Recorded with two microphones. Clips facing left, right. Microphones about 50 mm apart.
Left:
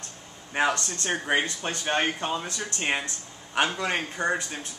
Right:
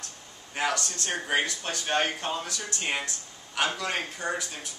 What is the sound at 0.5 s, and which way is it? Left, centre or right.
Speech, left.